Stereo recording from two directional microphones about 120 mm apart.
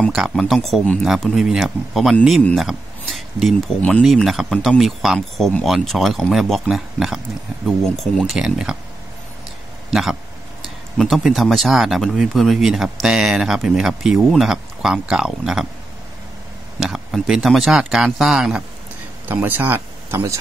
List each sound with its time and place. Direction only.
0.1 s speech: centre (ahead or behind)
9.8 s speech: 5° right (ahead or behind)
16.8 s speech: centre (ahead or behind)
19.2 s speech: 15° right (ahead or behind)